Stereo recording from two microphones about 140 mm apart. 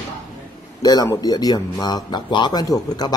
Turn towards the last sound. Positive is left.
turn(degrees=30)  # may be behind; listen again after turning